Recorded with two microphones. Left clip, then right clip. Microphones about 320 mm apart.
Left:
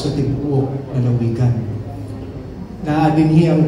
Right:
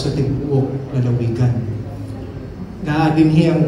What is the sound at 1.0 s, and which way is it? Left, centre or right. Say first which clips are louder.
Mantra: left 1 dB; left.